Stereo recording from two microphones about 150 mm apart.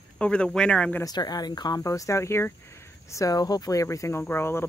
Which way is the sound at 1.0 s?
25° left (ahead or behind).